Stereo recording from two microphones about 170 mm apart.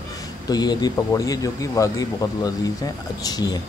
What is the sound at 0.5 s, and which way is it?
Speech, 25° left (ahead or behind).